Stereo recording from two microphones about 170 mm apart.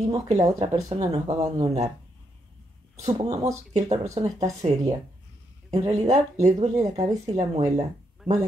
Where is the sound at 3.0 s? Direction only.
25° right (ahead or behind).